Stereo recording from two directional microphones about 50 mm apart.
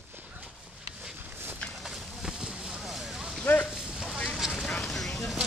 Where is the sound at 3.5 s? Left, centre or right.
Left.